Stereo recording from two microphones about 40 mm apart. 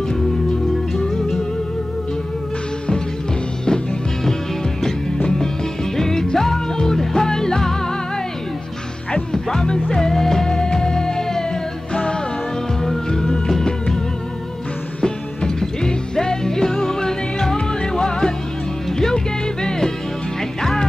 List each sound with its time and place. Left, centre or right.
0.9 s music: centre
3.6 s music: centre
9.1 s music: centre
11.9 s music: left
12.8 s music: centre